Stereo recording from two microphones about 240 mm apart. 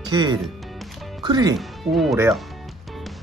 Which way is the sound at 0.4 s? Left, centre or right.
Centre.